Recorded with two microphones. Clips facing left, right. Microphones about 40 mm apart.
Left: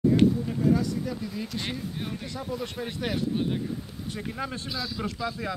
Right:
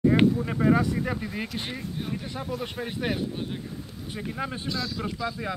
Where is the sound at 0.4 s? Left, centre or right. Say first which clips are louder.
Right 2 dB; right.